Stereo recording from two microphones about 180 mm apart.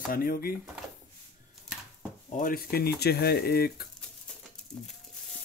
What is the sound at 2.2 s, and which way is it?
Speech, 50° left (ahead or behind).